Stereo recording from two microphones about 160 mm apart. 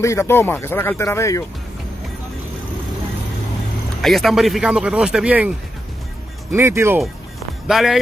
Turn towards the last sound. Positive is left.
turn(degrees=0)  # may be behind; listen again after turning